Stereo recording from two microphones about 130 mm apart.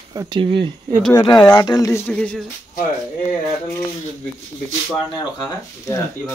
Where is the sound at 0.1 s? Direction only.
30° right (ahead or behind).